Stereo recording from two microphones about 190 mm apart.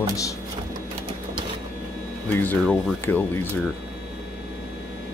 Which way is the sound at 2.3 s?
10° left (ahead or behind).